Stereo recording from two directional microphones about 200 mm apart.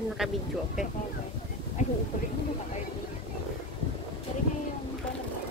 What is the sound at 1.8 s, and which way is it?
Vehicle, 35° left (ahead or behind).